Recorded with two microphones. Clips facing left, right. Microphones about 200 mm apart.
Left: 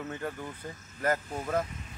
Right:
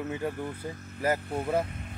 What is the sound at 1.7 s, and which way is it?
Vehicle, 55° right (ahead or behind).